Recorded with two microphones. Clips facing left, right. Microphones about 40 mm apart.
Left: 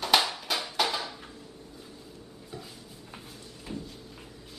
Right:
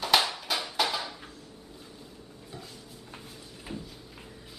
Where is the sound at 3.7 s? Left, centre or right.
Centre.